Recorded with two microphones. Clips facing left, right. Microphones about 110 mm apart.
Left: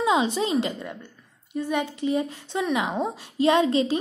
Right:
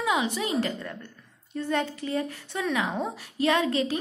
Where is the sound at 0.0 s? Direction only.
25° left (ahead or behind).